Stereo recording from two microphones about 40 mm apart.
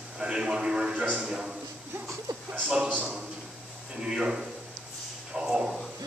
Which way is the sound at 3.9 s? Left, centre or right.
Right.